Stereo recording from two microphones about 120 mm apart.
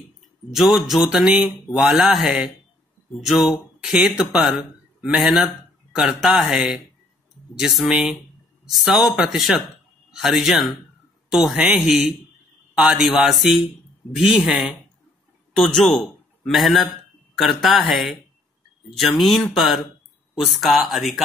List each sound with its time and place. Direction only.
0.5 s a man's voice: centre (ahead or behind)